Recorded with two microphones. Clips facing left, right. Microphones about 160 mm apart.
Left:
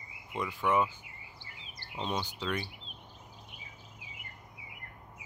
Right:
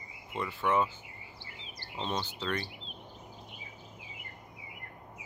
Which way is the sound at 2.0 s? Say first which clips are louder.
Even; 10° left (ahead or behind).